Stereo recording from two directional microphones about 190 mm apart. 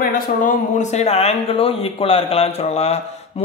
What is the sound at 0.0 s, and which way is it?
A man's voice, 45° left (ahead or behind).